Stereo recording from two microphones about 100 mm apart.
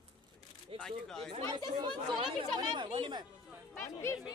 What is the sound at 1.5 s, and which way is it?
Speech, 45° right (ahead or behind).